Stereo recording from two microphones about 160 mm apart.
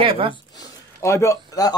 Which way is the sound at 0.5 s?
20° left (ahead or behind).